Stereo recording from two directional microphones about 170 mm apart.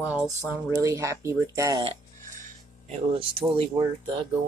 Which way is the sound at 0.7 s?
20° right (ahead or behind).